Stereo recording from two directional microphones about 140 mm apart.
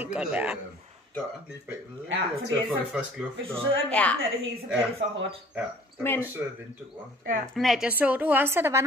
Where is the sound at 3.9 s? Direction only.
10° left (ahead or behind).